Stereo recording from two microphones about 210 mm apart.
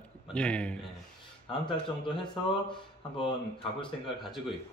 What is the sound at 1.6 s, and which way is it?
Speech, 25° left (ahead or behind).